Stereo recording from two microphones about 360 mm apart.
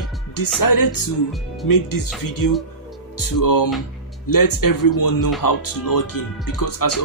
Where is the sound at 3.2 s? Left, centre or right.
Left.